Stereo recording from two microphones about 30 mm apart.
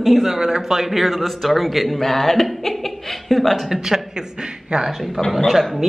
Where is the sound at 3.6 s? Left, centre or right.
Centre.